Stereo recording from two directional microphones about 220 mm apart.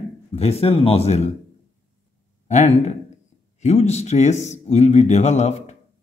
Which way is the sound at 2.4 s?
30° left (ahead or behind).